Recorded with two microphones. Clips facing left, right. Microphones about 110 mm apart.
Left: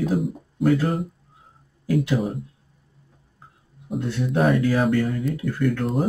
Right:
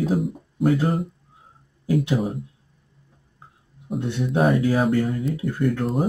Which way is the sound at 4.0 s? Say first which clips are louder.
Even; 25° right (ahead or behind).